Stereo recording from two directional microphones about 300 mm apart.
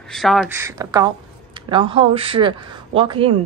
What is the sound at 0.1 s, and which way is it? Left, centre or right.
A woman's voice, centre.